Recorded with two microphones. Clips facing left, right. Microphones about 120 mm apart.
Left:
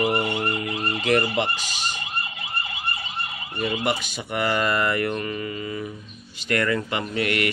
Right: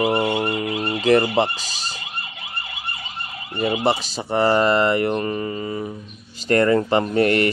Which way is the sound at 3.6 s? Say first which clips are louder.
Right 5 dB; 35° right (ahead or behind).